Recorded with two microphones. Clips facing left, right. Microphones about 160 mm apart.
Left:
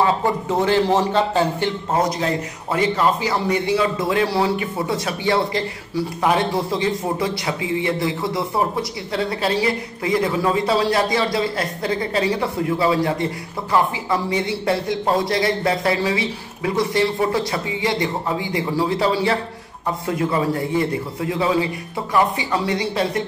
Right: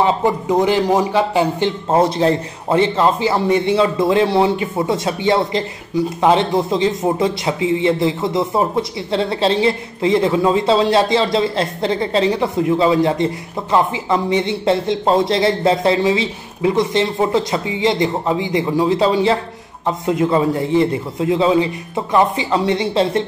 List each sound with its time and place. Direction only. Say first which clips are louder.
0.0 s a man's voice: right 3 dB; 15° right (ahead or behind)
1.9 s a woman's voice: right 7 dB; 30° right (ahead or behind)